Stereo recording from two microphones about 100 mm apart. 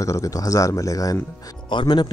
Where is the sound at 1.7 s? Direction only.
50° left (ahead or behind).